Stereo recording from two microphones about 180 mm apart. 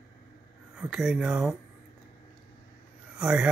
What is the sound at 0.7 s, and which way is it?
Speech, 5° right (ahead or behind).